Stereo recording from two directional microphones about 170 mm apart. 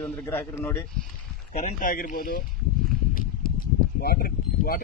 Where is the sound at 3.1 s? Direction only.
60° left (ahead or behind).